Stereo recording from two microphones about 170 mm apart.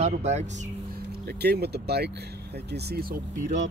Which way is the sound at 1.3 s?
70° right (ahead or behind).